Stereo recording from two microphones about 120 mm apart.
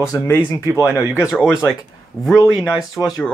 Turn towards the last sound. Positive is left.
turn(degrees=30)  # may be behind; listen again after turning